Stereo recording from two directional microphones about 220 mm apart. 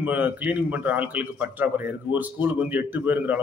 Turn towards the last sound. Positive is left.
turn(degrees=-10)  # may be behind; listen again after turning